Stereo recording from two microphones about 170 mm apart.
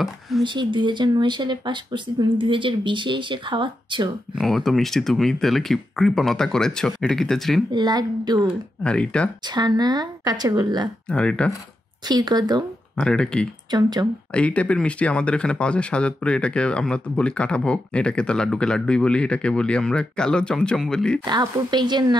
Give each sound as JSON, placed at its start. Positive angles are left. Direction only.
{"t": 0.4, "sound": "speech", "side_deg": -30}
{"t": 4.4, "sound": "speech", "side_deg": 0}
{"t": 7.7, "sound": "speech", "side_deg": -25}
{"t": 8.8, "sound": "speech", "side_deg": 5}
{"t": 9.5, "sound": "speech", "side_deg": -25}
{"t": 11.1, "sound": "speech", "side_deg": 5}
{"t": 12.1, "sound": "speech", "side_deg": -25}
{"t": 12.9, "sound": "speech", "side_deg": 5}
{"t": 13.7, "sound": "speech", "side_deg": -25}
{"t": 14.3, "sound": "speech", "side_deg": 10}
{"t": 21.3, "sound": "speech", "side_deg": -25}